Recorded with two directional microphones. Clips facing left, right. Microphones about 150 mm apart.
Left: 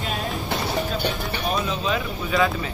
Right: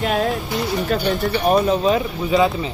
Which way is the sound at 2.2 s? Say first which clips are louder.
Right 5 dB; 25° right (ahead or behind).